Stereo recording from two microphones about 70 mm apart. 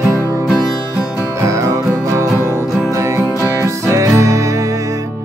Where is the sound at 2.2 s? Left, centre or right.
Left.